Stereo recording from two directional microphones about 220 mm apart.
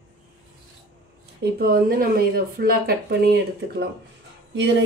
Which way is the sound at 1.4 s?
45° right (ahead or behind).